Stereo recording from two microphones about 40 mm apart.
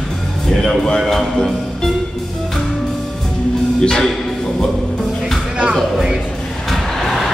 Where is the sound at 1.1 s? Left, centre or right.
Centre.